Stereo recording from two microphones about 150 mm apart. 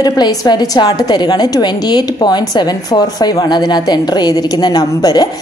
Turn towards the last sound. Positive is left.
turn(degrees=25)  # may be behind; listen again after turning